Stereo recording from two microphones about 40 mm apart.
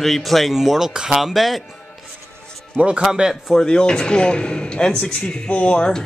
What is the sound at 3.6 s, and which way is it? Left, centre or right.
Speech, left.